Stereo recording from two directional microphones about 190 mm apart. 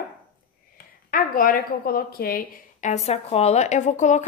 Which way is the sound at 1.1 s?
50° left (ahead or behind).